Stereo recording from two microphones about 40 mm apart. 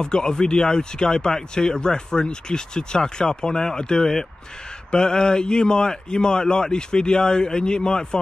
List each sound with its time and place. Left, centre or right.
0.0 s speech: left